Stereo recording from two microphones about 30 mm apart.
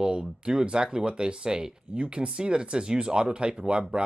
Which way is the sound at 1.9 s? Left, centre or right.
Right.